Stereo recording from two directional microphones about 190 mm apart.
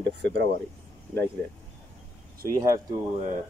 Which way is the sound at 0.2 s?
70° right (ahead or behind).